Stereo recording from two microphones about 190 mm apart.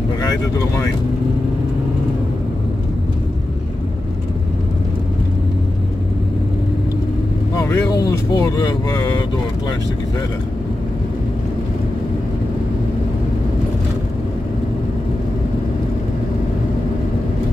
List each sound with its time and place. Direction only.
0.2 s speech: 20° left (ahead or behind)
7.5 s vehicle: 15° left (ahead or behind)
8.3 s speech: 20° left (ahead or behind)